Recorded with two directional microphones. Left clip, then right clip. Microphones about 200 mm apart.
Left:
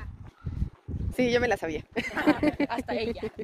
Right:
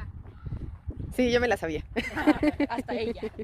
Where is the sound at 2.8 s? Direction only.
15° left (ahead or behind).